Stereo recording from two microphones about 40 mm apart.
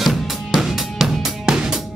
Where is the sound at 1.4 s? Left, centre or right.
Centre.